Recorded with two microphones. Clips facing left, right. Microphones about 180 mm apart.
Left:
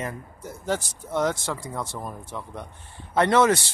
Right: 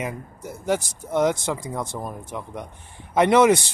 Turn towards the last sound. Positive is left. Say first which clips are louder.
# right 3 dB
turn(degrees=-15)  # may be behind; listen again after turning